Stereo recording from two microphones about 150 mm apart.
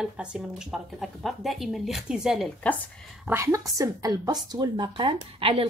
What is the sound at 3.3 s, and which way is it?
A woman's voice, 20° right (ahead or behind).